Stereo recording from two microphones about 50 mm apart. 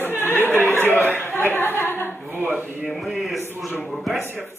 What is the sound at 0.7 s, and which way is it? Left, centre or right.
Chuckle, left.